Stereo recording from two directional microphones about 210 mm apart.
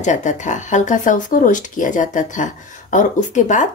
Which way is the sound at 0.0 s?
35° left (ahead or behind).